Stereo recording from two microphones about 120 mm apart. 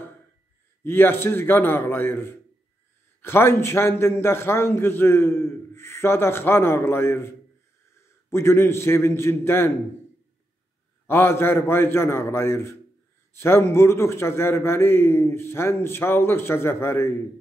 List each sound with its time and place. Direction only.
0.8 s a man's voice: 20° left (ahead or behind)
8.3 s a man's voice: 20° left (ahead or behind)
11.1 s a man's voice: 20° left (ahead or behind)